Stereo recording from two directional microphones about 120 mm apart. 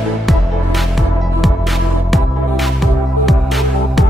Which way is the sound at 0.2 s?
Centre (ahead or behind).